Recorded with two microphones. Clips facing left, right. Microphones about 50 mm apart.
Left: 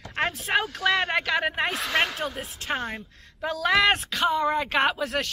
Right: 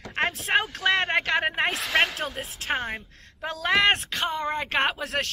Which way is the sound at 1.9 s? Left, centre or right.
Centre.